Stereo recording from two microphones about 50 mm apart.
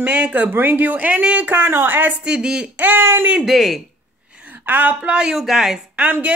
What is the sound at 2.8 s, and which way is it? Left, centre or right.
Speech, right.